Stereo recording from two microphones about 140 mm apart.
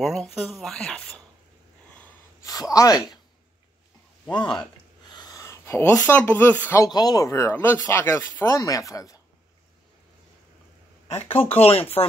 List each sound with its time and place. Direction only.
0.0 s speech: centre (ahead or behind)
2.4 s speech: 25° left (ahead or behind)
4.3 s speech: 35° left (ahead or behind); by 6.8 s 15° left (ahead or behind)
6.8 s speech: 30° left (ahead or behind)
11.1 s speech: 15° left (ahead or behind)
11.4 s speech: 45° left (ahead or behind)